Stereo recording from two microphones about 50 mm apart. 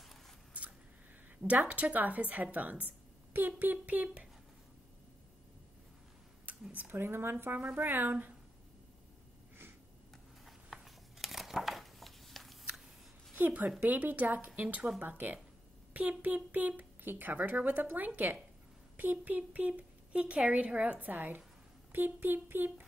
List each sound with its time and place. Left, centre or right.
1.4 s speech: right
6.7 s speech: right
7.0 s speech: right
10.4 s a sound: centre
13.5 s a woman's voice: right